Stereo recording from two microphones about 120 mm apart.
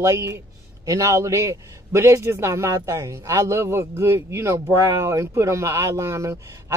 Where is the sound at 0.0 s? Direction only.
25° right (ahead or behind).